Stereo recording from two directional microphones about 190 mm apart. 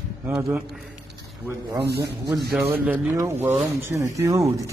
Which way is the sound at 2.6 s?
10° right (ahead or behind).